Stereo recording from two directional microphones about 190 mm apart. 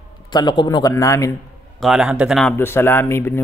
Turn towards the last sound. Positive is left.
turn(degrees=10)  # may be behind; listen again after turning